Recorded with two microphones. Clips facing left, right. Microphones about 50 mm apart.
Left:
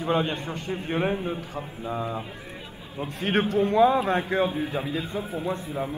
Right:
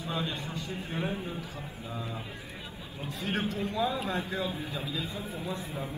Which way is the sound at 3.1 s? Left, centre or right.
Left.